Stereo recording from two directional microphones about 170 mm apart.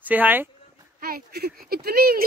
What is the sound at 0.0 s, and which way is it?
Speech, 10° right (ahead or behind).